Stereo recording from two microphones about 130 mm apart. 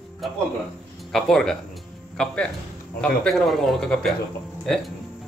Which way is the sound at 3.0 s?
5° left (ahead or behind).